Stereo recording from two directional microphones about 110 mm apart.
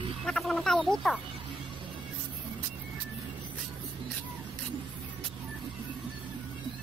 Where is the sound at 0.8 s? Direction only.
5° left (ahead or behind).